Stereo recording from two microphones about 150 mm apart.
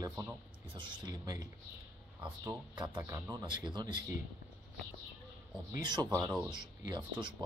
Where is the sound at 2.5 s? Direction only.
30° right (ahead or behind).